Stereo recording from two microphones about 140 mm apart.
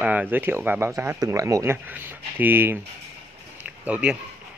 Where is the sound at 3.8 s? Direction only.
10° right (ahead or behind).